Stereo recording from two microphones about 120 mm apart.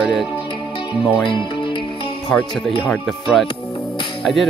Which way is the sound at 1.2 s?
45° left (ahead or behind).